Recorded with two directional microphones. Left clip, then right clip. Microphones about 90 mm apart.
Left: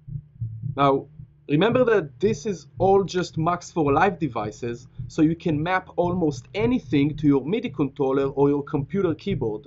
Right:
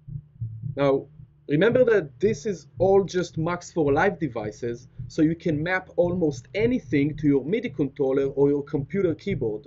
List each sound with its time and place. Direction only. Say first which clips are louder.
1.5 s speech: even; 35° left (ahead or behind)